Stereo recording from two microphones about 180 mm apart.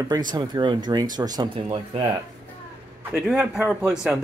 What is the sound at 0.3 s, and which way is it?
Speech, 25° right (ahead or behind).